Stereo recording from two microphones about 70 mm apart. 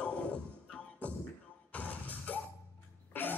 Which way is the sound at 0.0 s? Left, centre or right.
Centre.